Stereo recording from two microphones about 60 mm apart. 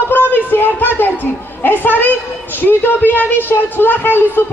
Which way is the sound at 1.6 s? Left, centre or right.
Left.